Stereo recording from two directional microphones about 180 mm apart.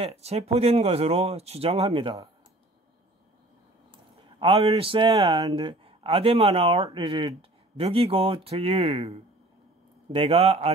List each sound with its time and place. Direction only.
0.0 s speech: 35° right (ahead or behind)
4.4 s speech: 30° right (ahead or behind)